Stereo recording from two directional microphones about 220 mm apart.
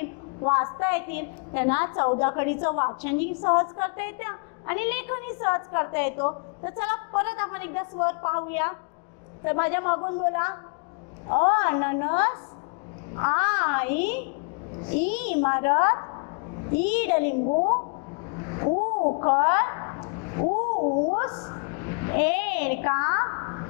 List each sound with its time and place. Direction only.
0.4 s a woman's voice: 20° left (ahead or behind)
2.7 s a woman's voice: 25° left (ahead or behind)
3.0 s a woman's voice: 10° left (ahead or behind)
7.2 s a woman's voice: 15° left (ahead or behind)
11.5 s a woman's voice: 15° left (ahead or behind)
15.4 s a woman's voice: 15° left (ahead or behind)
17.3 s a woman's voice: 35° left (ahead or behind)
18.4 s a sound: 20° left (ahead or behind)
18.7 s a sound: 30° left (ahead or behind)
20.4 s a sound: 35° left (ahead or behind)